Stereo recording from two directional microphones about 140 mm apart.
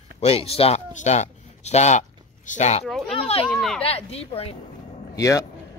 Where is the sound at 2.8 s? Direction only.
Centre (ahead or behind).